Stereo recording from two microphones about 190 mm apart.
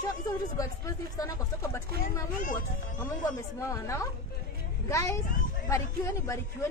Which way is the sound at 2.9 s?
15° left (ahead or behind).